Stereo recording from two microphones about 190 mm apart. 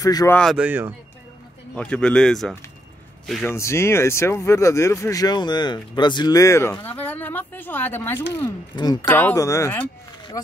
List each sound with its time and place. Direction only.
0.0 s speech: 20° left (ahead or behind)
0.4 s speech: centre (ahead or behind)
1.8 s a man's voice: 5° left (ahead or behind)
3.4 s speech: 15° left (ahead or behind)